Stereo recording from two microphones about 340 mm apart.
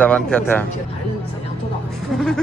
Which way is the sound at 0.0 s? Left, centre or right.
Centre.